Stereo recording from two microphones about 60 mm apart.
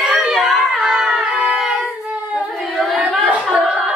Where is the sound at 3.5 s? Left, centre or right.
Centre.